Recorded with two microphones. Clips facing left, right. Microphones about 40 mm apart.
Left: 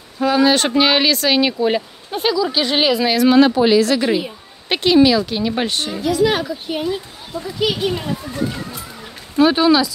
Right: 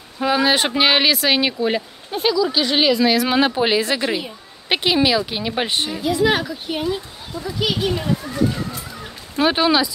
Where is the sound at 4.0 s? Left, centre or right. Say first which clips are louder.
Left 4 dB; centre.